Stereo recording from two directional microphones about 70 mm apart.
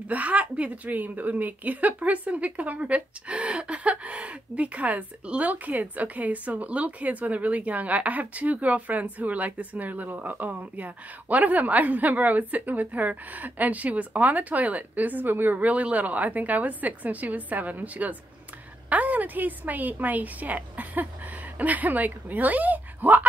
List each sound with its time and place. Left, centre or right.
0.1 s a woman's voice: right